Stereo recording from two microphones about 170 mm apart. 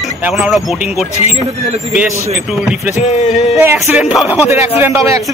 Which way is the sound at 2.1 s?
15° right (ahead or behind).